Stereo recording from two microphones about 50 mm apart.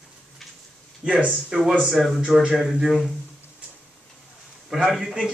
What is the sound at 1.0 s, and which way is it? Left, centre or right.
Speech, right.